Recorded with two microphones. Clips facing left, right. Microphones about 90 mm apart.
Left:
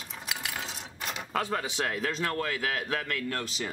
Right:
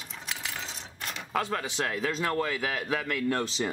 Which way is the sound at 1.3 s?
Centre (ahead or behind).